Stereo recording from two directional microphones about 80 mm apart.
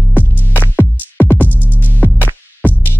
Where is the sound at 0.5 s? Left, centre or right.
Left.